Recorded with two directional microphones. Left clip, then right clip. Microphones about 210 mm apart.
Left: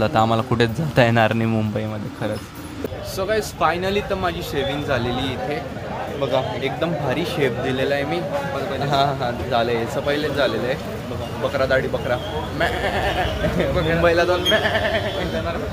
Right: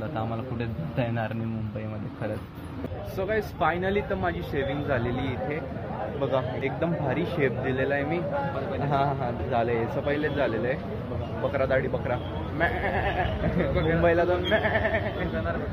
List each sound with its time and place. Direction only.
0.0 s a man's voice: 35° left (ahead or behind)
3.3 s speech: 10° left (ahead or behind)
6.3 s speech: 10° left (ahead or behind)
11.5 s speech: 10° left (ahead or behind)
13.7 s a man's voice: 35° left (ahead or behind)
14.0 s speech: 5° left (ahead or behind)